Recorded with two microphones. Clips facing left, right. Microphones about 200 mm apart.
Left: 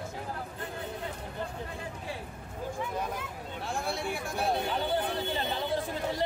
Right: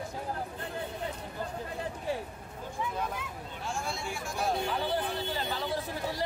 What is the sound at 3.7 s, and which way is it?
Speech, 60° left (ahead or behind).